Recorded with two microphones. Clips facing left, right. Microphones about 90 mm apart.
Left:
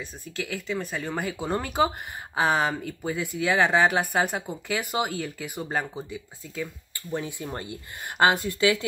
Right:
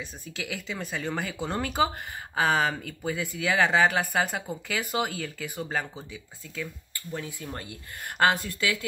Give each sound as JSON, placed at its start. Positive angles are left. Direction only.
{"t": 0.4, "sound": "speech", "side_deg": 0}
{"t": 7.1, "sound": "speech", "side_deg": 20}